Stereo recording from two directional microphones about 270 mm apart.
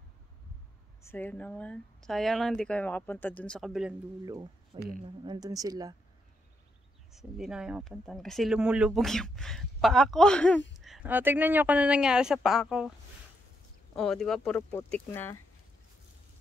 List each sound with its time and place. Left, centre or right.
1.0 s speech: centre
4.7 s speech: right
5.2 s speech: centre
7.1 s speech: centre
13.9 s speech: centre